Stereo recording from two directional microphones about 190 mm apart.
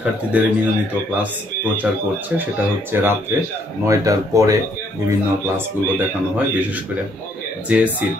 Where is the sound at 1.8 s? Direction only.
10° right (ahead or behind).